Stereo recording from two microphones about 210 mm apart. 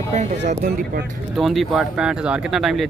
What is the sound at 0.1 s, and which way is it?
Speech, 35° right (ahead or behind).